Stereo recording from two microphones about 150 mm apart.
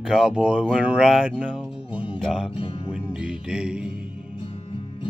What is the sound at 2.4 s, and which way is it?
Speech, 35° left (ahead or behind).